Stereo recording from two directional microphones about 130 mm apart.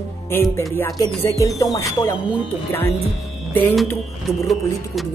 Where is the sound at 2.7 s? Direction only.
20° left (ahead or behind).